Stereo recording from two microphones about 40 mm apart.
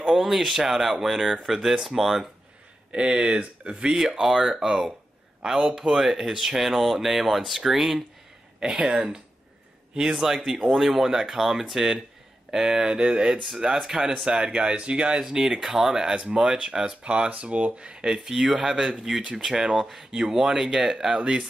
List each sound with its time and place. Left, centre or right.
0.1 s speech: centre
2.9 s speech: right
3.9 s speech: centre
5.8 s speech: centre
8.7 s speech: right
10.1 s speech: centre
10.8 s speech: centre
14.2 s speech: right
15.2 s speech: centre